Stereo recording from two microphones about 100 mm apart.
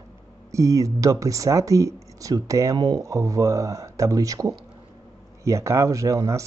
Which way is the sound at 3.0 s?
35° right (ahead or behind).